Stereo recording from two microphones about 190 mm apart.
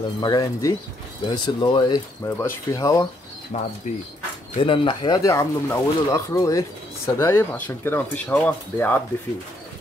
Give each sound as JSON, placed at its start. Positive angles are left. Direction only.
{"t": 0.2, "sound": "speech", "side_deg": 20}
{"t": 3.5, "sound": "speech", "side_deg": 35}